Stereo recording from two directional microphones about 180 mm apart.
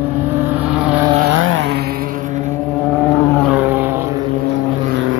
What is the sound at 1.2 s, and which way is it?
Vehicle, 90° right.